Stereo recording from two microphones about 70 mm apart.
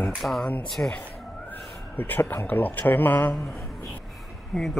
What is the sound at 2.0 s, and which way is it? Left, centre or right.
Speech, left.